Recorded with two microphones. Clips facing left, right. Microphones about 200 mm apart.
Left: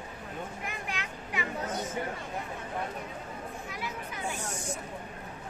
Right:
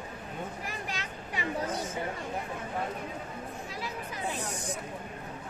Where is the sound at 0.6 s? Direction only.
35° right (ahead or behind).